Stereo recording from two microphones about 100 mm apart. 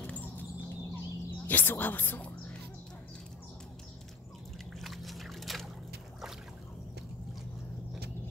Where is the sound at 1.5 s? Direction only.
20° left (ahead or behind).